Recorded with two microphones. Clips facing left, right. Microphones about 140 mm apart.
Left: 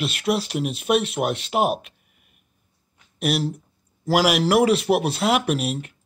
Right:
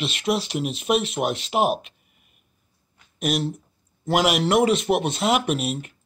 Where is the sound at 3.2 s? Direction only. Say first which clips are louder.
Left 1 dB; 5° left (ahead or behind).